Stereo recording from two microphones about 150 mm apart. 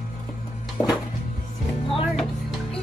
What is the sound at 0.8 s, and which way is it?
Speech, 5° left (ahead or behind).